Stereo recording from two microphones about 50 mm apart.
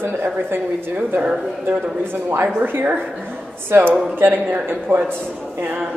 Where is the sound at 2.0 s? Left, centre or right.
Right.